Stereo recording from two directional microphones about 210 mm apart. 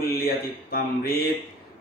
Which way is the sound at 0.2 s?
45° left (ahead or behind).